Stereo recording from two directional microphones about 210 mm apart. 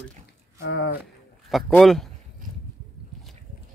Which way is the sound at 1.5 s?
Centre (ahead or behind).